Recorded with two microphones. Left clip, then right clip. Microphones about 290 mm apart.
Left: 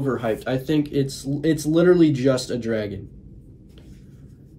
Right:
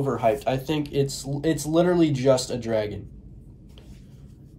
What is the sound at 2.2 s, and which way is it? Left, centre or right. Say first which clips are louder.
Speech: right 1 dB; right.